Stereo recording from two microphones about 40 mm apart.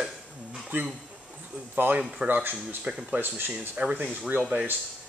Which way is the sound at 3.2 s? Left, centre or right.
Right.